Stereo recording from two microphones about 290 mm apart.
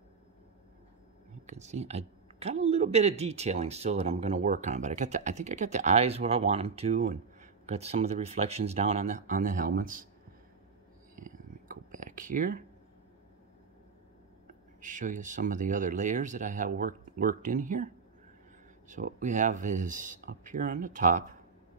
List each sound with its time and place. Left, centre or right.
1.4 s speech: right
11.2 s whispering: right
14.8 s speech: right